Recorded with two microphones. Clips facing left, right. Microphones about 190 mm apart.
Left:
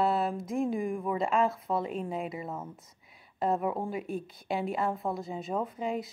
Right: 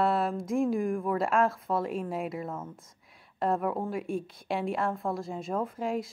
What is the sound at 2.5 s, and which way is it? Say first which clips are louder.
Speech: right 1 dB; 10° left (ahead or behind).